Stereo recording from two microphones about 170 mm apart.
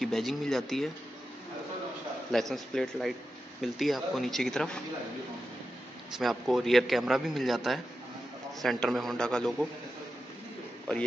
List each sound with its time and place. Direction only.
0.0 s a man's voice: centre (ahead or behind)
2.3 s a man's voice: centre (ahead or behind)
6.1 s a man's voice: centre (ahead or behind)